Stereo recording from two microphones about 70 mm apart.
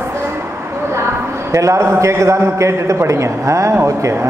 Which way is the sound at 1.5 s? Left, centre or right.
Right.